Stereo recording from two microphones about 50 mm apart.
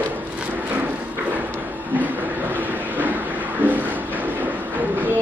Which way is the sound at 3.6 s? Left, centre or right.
Right.